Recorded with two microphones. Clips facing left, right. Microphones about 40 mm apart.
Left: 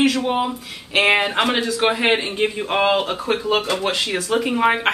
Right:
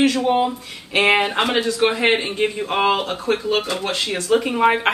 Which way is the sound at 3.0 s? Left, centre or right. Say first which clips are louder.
Even; left.